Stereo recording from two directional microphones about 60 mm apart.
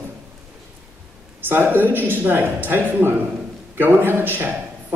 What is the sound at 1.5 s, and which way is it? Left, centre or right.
Speech, right.